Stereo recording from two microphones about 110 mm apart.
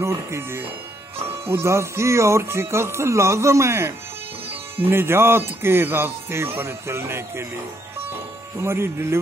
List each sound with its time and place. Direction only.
0.0 s speech: 25° right (ahead or behind)
8.5 s speech: 25° right (ahead or behind)